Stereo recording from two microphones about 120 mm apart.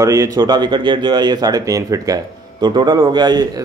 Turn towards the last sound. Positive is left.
turn(degrees=-35)  # may be behind; listen again after turning